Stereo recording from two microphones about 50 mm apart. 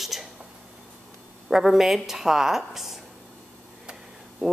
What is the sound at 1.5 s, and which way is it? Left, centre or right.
Speech, centre.